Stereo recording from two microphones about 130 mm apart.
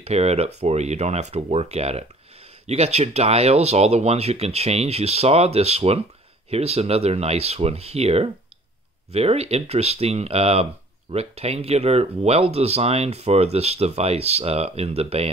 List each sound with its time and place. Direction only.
0.0 s speech: 55° right (ahead or behind)